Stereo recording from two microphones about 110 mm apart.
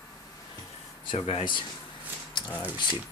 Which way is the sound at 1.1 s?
60° left (ahead or behind).